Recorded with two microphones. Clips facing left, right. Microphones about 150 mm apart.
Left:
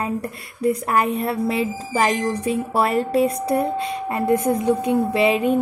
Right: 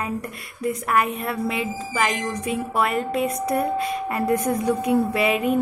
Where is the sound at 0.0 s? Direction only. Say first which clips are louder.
Left 3 dB; 30° left (ahead or behind).